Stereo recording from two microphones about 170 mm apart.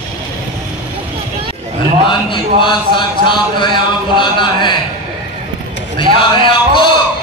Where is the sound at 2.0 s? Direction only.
30° left (ahead or behind).